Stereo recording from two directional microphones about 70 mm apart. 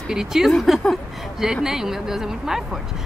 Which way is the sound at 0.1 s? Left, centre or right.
Centre.